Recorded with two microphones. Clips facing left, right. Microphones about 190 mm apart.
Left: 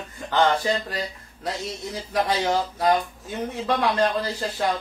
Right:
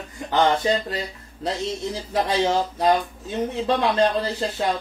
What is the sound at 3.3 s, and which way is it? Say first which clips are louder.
Speech: right 3 dB; 25° right (ahead or behind).